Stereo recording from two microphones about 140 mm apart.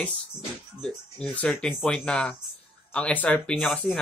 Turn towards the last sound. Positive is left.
turn(degrees=5)  # may be behind; listen again after turning